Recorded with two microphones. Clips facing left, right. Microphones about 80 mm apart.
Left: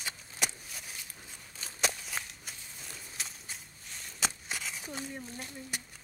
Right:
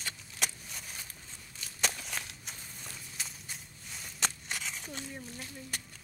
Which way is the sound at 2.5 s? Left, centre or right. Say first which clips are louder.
Even; centre.